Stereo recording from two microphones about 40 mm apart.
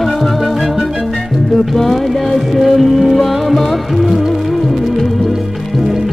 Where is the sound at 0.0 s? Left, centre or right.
Centre.